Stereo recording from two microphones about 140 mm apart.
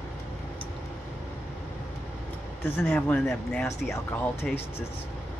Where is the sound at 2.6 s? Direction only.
15° left (ahead or behind).